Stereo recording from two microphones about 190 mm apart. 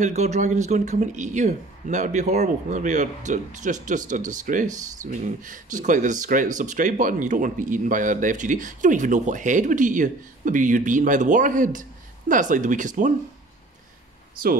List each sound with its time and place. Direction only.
0.0 s a man's voice: 35° right (ahead or behind)